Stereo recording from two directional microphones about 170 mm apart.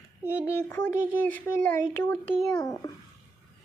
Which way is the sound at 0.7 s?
10° left (ahead or behind).